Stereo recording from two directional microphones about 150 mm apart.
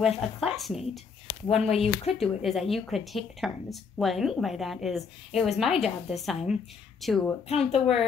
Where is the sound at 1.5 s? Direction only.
40° left (ahead or behind).